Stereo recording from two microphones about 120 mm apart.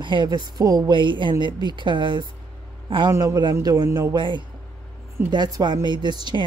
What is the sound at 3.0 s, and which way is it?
A man's voice, 25° right (ahead or behind).